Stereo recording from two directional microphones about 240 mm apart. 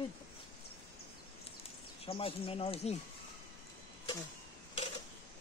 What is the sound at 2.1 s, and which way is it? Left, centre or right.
Speech, left.